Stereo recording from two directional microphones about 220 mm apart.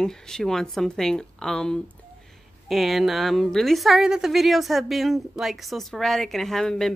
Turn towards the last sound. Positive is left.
turn(degrees=0)  # may be behind; listen again after turning